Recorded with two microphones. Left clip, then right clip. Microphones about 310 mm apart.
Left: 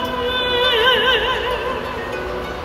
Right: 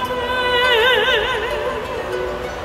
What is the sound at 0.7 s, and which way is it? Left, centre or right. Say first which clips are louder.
Music: left 1 dB; centre.